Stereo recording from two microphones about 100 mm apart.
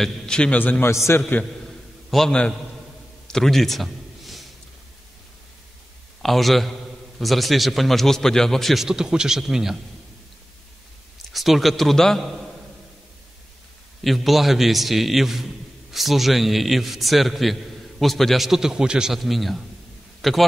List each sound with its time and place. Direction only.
0.0 s a man's voice: 10° left (ahead or behind); by 1.2 s 25° left (ahead or behind)
2.0 s a man's voice: 5° left (ahead or behind)
3.3 s a sound: 5° left (ahead or behind)
6.2 s a man's voice: centre (ahead or behind)
11.3 s a man's voice: centre (ahead or behind)
14.0 s a man's voice: centre (ahead or behind)